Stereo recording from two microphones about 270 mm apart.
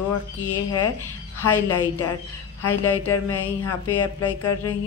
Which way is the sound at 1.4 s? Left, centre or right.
Left.